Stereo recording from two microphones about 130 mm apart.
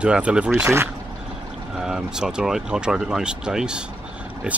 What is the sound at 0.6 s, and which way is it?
Speech, 20° right (ahead or behind).